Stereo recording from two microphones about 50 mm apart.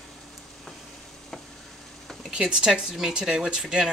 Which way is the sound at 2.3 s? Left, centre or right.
Centre.